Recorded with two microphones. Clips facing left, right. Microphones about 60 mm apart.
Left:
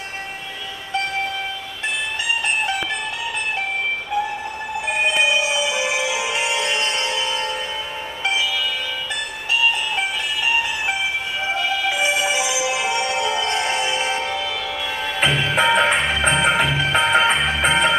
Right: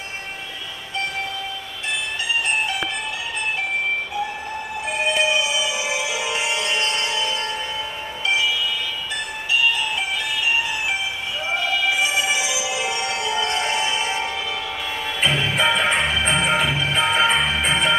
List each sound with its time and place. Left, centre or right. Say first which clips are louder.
6.1 s music: left 2 dB; left
12.0 s music: left 1 dB; left
15.2 s music: left 2 dB; left